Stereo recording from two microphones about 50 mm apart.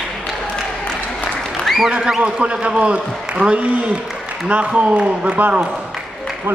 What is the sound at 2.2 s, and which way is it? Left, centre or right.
A man's voice, right.